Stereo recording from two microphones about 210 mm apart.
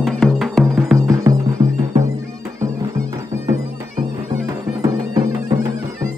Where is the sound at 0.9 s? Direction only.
15° right (ahead or behind).